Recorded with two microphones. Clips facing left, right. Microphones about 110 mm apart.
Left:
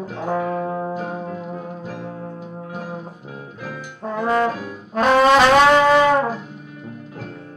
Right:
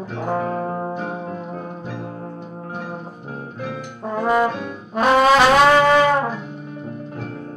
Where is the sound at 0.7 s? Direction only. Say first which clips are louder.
Even; 20° right (ahead or behind).